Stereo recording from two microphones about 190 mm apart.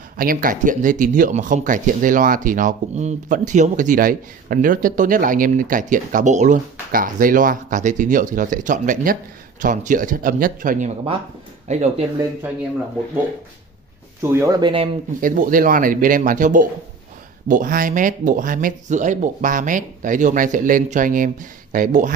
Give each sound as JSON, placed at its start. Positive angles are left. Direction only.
{"t": 0.2, "sound": "speech", "side_deg": -45}
{"t": 14.2, "sound": "speech", "side_deg": -15}
{"t": 14.6, "sound": "speech", "side_deg": -25}
{"t": 15.1, "sound": "speech", "side_deg": -45}